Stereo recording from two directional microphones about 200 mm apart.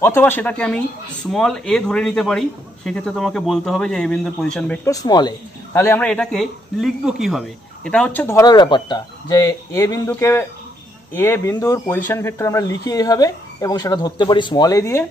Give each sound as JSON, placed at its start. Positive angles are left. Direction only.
{"t": 0.0, "sound": "a man's voice", "side_deg": 10}
{"t": 4.9, "sound": "speech", "side_deg": 20}